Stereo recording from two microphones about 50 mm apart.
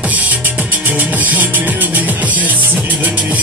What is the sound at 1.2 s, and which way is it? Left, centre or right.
Music, right.